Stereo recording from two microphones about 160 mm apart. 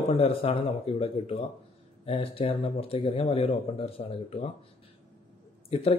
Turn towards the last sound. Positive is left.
turn(degrees=35)  # may be behind; listen again after turning